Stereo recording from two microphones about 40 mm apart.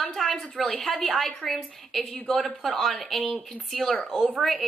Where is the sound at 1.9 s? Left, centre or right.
Centre.